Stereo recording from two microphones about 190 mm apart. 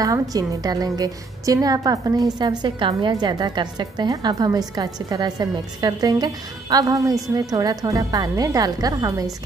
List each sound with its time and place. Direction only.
0.0 s a woman's voice: 20° right (ahead or behind)